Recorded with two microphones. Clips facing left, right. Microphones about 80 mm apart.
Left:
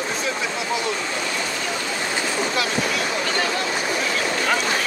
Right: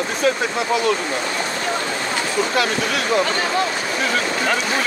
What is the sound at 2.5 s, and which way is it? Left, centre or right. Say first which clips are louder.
Speech: right 3 dB; right.